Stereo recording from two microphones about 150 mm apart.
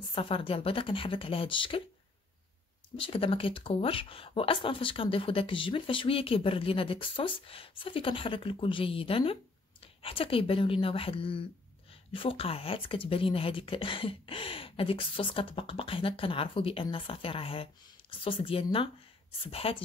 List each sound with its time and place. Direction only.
0.1 s speech: 35° left (ahead or behind)
3.0 s speech: 35° left (ahead or behind)